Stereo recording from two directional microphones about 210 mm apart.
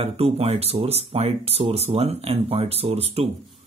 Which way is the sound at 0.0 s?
30° right (ahead or behind).